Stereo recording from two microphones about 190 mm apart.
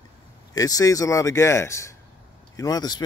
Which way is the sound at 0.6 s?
20° left (ahead or behind).